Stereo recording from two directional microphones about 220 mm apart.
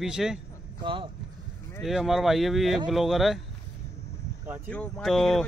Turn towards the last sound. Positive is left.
turn(degrees=0)  # may be behind; listen again after turning